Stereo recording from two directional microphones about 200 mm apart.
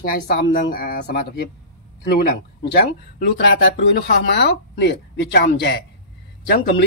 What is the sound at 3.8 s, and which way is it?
Speech, 60° left (ahead or behind).